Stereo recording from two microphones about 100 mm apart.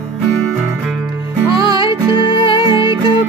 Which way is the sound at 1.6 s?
55° left (ahead or behind).